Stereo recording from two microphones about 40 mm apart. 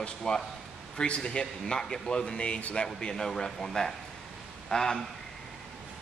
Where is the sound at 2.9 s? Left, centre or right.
Centre.